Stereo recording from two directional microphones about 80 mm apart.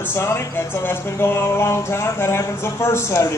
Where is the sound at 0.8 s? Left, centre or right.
Left.